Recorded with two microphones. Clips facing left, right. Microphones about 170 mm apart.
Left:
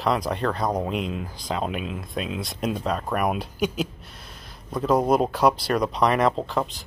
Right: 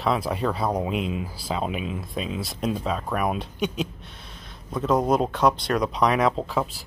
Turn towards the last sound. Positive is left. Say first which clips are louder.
# even
turn(degrees=-5)  # may be behind; listen again after turning